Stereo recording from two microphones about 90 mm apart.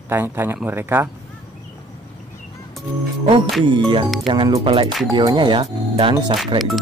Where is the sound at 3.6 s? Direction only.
65° right (ahead or behind).